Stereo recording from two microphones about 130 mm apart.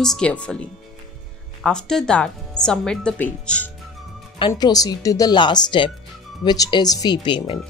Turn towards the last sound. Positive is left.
turn(degrees=40)  # may be behind; listen again after turning